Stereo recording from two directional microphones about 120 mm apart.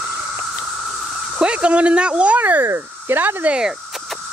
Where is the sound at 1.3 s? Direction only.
10° right (ahead or behind).